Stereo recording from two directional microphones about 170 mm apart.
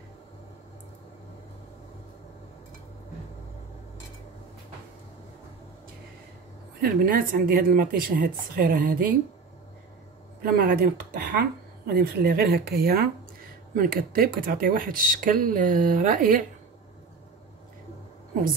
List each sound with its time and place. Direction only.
6.8 s speech: 55° right (ahead or behind)
10.4 s speech: 60° right (ahead or behind)